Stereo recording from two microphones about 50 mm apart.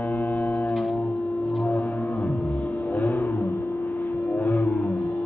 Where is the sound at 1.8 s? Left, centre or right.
Left.